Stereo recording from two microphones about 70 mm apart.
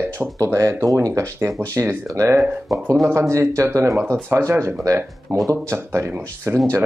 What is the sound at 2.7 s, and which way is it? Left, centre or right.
Speech, right.